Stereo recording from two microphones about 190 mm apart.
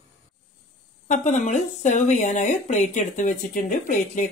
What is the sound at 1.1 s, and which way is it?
Speech, 40° left (ahead or behind).